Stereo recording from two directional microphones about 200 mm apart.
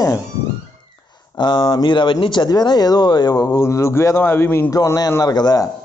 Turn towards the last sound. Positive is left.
turn(degrees=20)  # may be behind; listen again after turning